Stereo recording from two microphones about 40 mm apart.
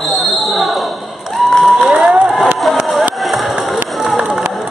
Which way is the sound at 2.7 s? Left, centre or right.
Centre.